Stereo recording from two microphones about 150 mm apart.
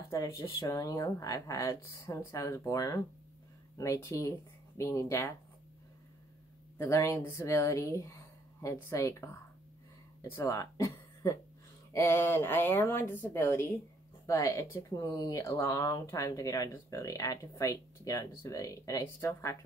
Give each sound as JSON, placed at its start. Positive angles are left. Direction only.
{"t": 0.1, "sound": "speech", "side_deg": 20}
{"t": 6.8, "sound": "a woman's voice", "side_deg": 20}